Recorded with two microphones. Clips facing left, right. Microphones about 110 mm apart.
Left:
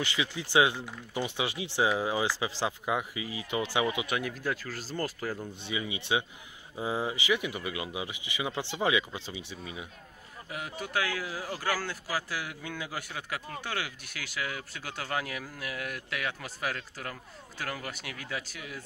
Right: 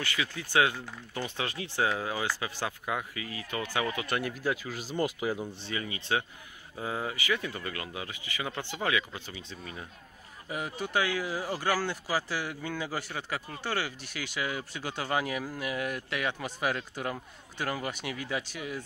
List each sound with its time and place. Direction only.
0.0 s speech: 20° left (ahead or behind)
4.1 s speech: centre (ahead or behind)
5.7 s speech: 15° left (ahead or behind)
10.5 s speech: centre (ahead or behind)
12.3 s speech: 5° left (ahead or behind)